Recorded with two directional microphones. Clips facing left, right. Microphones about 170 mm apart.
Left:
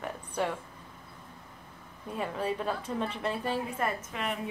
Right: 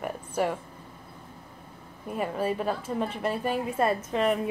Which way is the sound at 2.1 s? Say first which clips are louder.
Right 4 dB; 5° right (ahead or behind).